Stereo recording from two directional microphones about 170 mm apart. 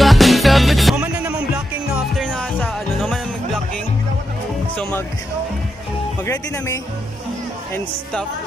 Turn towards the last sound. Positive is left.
turn(degrees=20)  # may be behind; listen again after turning